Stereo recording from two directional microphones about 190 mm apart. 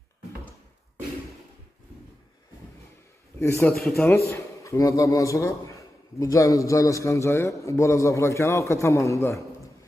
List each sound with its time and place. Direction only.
3.3 s a man's voice: 15° left (ahead or behind)
3.8 s speech: centre (ahead or behind)
4.1 s a man's voice: 15° left (ahead or behind)